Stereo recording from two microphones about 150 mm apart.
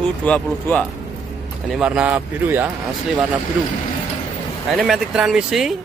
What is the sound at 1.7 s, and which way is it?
Speech, 5° right (ahead or behind).